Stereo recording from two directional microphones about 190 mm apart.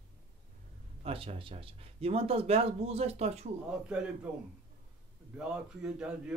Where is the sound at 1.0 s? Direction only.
30° right (ahead or behind).